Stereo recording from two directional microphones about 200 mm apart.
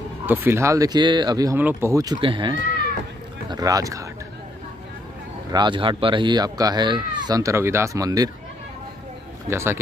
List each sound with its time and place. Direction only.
0.3 s speech: 10° right (ahead or behind)
5.5 s speech: 20° right (ahead or behind)
9.5 s speech: 15° right (ahead or behind)